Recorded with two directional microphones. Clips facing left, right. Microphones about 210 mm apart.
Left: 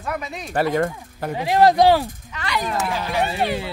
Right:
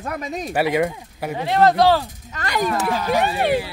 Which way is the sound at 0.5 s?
10° right (ahead or behind).